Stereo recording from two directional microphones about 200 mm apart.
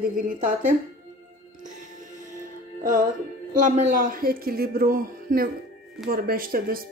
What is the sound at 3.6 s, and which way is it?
Speech, 40° right (ahead or behind).